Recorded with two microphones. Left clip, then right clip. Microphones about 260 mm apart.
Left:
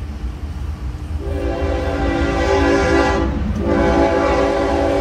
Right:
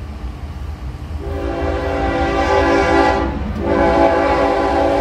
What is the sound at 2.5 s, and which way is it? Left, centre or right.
Train, right.